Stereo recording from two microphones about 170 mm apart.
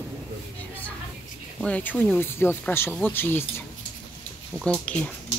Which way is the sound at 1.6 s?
10° left (ahead or behind).